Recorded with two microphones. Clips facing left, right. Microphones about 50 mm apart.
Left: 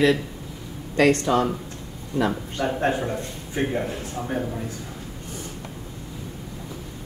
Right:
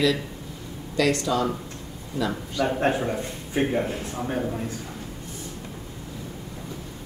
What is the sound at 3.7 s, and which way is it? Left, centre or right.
Speech, centre.